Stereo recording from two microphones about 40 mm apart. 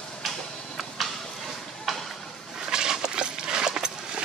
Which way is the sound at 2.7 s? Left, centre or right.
Centre.